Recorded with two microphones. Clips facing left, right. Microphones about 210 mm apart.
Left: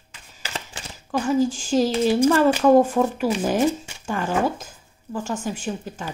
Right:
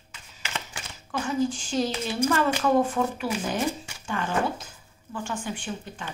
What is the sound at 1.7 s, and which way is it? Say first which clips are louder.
A woman's voice: left 8 dB; 40° left (ahead or behind).